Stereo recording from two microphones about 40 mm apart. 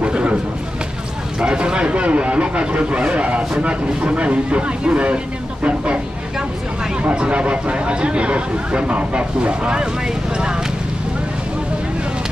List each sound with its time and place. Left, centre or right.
0.0 s a sound: right
1.4 s speech: right
7.2 s speech: right